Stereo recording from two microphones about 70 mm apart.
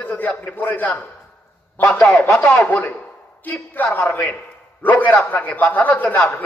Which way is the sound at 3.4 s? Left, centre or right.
Left.